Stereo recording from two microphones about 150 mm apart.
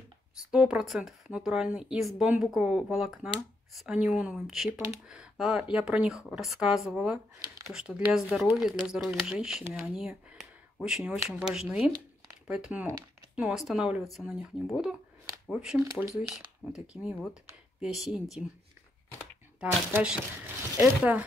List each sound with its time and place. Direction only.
0.5 s speech: 5° right (ahead or behind)
7.3 s a sound: 20° right (ahead or behind)
7.7 s speech: 5° right (ahead or behind)
15.8 s speech: 20° right (ahead or behind)
16.7 s speech: 5° right (ahead or behind)
19.6 s speech: 5° right (ahead or behind)